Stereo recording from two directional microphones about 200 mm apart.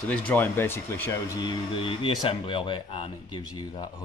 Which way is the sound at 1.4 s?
25° left (ahead or behind).